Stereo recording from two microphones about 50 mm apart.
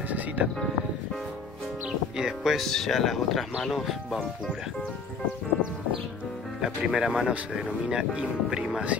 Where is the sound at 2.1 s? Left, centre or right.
Centre.